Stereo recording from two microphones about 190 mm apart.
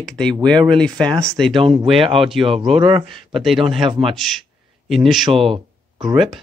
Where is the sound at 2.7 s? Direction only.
25° right (ahead or behind).